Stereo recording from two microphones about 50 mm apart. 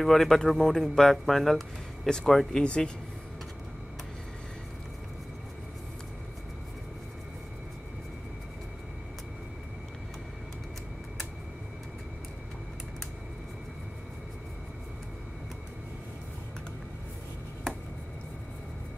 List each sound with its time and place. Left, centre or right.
0.0 s speech: centre
2.6 s speech: left